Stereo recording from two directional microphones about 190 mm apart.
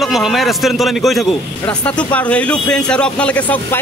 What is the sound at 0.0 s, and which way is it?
A man's voice, centre (ahead or behind).